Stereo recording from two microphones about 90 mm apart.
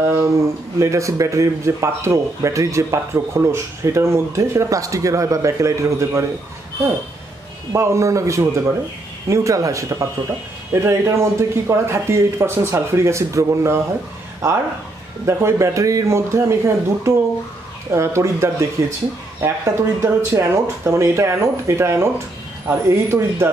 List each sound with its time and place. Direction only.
0.0 s a sound: 30° right (ahead or behind)
0.7 s speech: 35° right (ahead or behind)
7.7 s speech: 30° right (ahead or behind)
15.2 s speech: 30° right (ahead or behind)